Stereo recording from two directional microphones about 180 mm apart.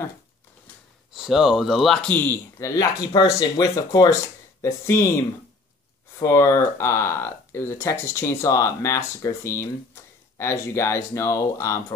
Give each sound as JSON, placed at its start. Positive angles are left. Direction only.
{"t": 1.1, "sound": "speech", "side_deg": -5}